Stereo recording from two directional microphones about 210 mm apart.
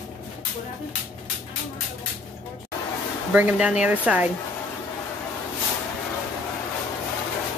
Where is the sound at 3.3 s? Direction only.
5° right (ahead or behind).